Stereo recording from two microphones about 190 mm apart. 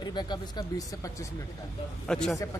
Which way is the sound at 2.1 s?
5° left (ahead or behind).